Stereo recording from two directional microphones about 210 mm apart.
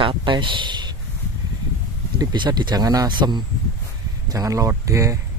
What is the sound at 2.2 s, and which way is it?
Speech, 20° right (ahead or behind).